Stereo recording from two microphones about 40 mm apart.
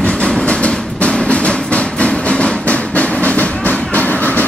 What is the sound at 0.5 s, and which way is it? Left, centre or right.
Train, left.